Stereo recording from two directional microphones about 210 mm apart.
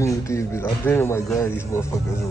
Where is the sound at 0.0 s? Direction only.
15° left (ahead or behind).